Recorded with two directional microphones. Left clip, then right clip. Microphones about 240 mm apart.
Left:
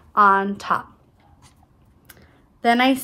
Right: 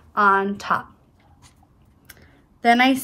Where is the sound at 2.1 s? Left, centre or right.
Centre.